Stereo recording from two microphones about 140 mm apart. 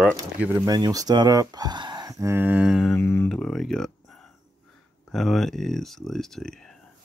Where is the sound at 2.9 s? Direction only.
20° left (ahead or behind).